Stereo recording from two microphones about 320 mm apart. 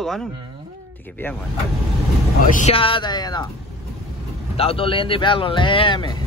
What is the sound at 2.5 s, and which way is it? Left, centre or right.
Speech, left.